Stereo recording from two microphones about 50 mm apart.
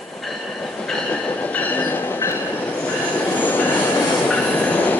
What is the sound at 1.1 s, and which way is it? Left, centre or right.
Train, left.